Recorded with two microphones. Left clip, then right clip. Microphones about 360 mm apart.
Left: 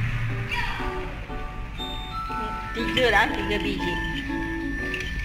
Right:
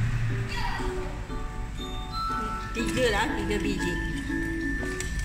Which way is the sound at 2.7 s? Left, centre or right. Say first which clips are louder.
Left 6 dB; centre.